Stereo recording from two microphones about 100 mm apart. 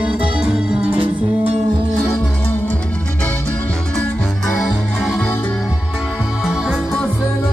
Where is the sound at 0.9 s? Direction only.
90° right.